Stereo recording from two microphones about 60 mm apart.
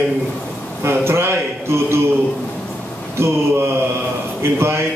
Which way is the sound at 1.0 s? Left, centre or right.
Right.